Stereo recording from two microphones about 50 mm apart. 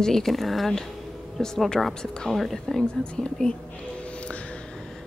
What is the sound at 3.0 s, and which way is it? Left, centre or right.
Speech, centre.